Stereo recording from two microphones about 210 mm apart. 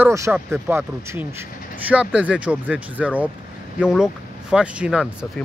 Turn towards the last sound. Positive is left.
turn(degrees=-5)  # may be behind; listen again after turning